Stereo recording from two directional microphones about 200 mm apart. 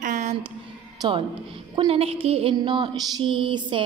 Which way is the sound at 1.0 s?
20° right (ahead or behind).